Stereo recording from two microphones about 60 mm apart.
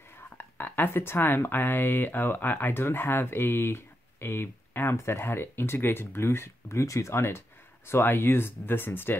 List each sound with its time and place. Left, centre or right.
0.1 s speech: left